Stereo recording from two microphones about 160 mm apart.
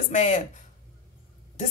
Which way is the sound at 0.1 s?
50° left (ahead or behind).